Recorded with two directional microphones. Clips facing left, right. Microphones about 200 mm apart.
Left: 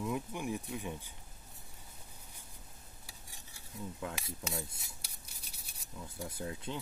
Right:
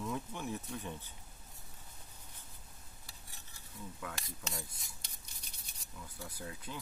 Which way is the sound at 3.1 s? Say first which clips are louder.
Left 2 dB; 10° left (ahead or behind).